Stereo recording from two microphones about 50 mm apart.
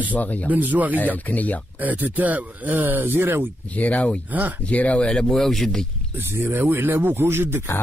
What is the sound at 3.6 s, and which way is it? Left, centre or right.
Speech, left.